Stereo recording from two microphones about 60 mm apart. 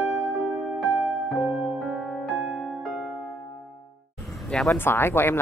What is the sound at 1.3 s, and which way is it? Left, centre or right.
Music, centre.